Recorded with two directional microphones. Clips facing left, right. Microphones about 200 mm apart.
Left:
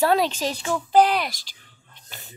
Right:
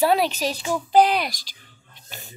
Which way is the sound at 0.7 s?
15° right (ahead or behind).